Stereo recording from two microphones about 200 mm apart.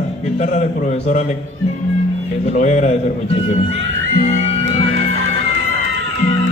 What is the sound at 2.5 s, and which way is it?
A man's voice, 35° left (ahead or behind).